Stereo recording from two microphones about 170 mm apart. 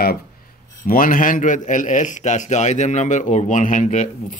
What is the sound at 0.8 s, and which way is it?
A man's voice, 55° left (ahead or behind).